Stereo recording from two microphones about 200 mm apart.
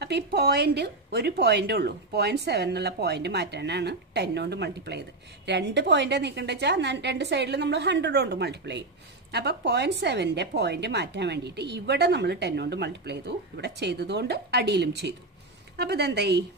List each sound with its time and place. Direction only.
0.0 s a woman's voice: 55° right (ahead or behind)